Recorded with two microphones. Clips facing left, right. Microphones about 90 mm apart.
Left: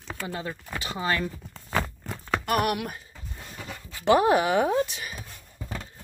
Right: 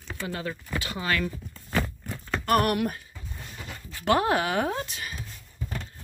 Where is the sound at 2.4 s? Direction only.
5° left (ahead or behind).